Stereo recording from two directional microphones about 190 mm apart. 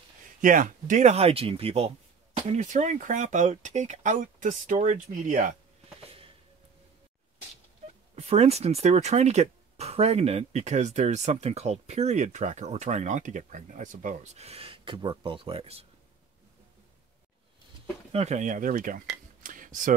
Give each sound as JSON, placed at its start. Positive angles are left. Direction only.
{"t": 0.4, "sound": "speech", "side_deg": -45}
{"t": 8.2, "sound": "speech", "side_deg": -35}
{"t": 18.1, "sound": "speech", "side_deg": -35}
{"t": 19.4, "sound": "a sound", "side_deg": -45}